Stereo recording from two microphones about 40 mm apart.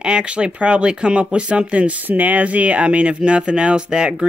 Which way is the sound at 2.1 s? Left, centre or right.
Right.